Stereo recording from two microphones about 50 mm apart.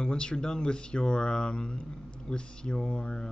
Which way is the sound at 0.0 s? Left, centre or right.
Centre.